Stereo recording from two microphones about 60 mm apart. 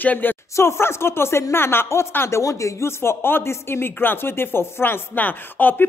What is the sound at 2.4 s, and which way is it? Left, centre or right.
Speech, left.